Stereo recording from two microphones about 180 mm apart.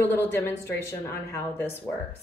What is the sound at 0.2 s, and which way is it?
Speech, 10° left (ahead or behind).